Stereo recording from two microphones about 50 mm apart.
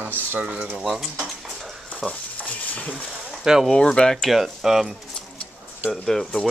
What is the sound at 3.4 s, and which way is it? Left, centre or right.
Speech, centre.